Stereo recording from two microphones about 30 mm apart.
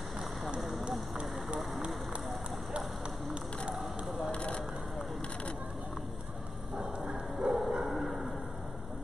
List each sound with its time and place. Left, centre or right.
0.6 s a sound: centre
4.3 s crushing: left
7.3 s dog: centre
7.8 s vehicle: centre